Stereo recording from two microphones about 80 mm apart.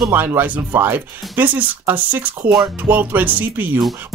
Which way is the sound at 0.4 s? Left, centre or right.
Right.